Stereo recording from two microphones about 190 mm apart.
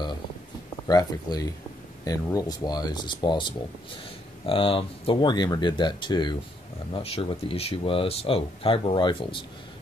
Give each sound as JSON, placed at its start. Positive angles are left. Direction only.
{"t": 0.8, "sound": "speech", "side_deg": 20}